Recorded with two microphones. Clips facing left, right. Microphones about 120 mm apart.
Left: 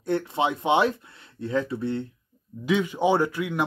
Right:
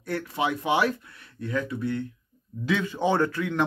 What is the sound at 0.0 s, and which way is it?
Speech, 25° left (ahead or behind).